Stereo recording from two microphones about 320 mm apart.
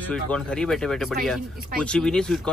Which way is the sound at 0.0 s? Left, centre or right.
Centre.